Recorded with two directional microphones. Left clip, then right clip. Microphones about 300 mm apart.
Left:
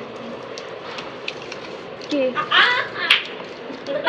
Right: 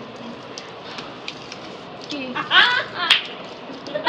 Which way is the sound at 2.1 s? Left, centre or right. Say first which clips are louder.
Even; centre.